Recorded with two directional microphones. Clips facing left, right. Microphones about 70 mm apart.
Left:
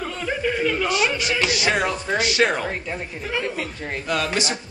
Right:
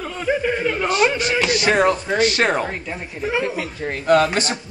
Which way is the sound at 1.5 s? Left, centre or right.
Right.